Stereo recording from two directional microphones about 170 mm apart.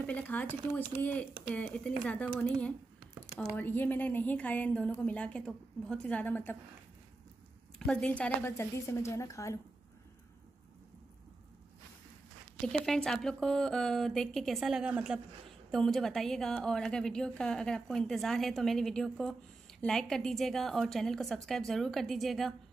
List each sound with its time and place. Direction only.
0.0 s a woman's voice: 10° left (ahead or behind)
7.8 s a woman's voice: 5° left (ahead or behind)
12.5 s a woman's voice: 5° left (ahead or behind)